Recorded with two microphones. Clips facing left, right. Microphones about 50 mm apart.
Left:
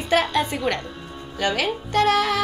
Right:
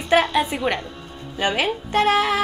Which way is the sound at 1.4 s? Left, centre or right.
Right.